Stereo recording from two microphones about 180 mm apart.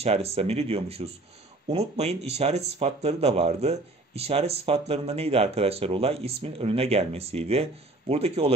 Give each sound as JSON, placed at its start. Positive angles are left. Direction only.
{"t": 0.0, "sound": "speech", "side_deg": -35}